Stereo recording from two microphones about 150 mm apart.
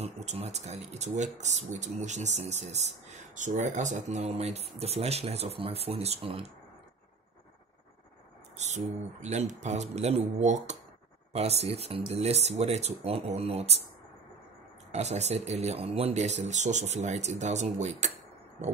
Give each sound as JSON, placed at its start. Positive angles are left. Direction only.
{"t": 0.0, "sound": "speech", "side_deg": -45}
{"t": 8.5, "sound": "speech", "side_deg": -50}
{"t": 14.9, "sound": "speech", "side_deg": -45}